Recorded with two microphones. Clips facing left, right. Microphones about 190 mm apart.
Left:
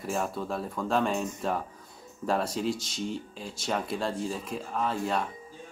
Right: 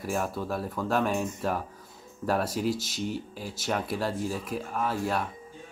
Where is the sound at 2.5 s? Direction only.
25° left (ahead or behind).